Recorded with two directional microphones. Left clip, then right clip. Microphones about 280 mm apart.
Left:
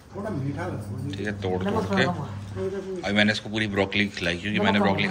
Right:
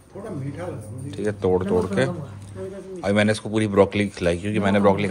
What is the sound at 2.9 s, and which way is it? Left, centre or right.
A man's voice, right.